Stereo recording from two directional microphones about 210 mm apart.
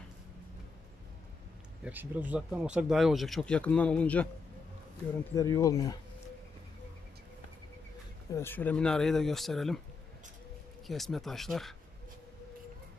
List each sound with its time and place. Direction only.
1.9 s speech: 10° right (ahead or behind)
5.3 s speech: 15° left (ahead or behind)
8.3 s speech: 10° left (ahead or behind)
10.9 s speech: centre (ahead or behind)